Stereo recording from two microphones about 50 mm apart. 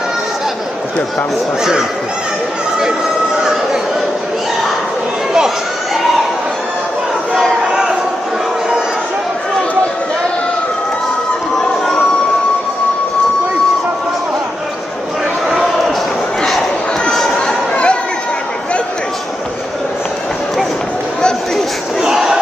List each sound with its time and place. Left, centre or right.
1.6 s speech: centre
7.6 s a sound: centre
15.4 s basketball bounce: centre
17.5 s chatter: left
22.0 s battle cry: centre